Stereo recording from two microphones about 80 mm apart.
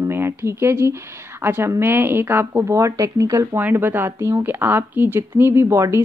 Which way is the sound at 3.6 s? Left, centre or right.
Right.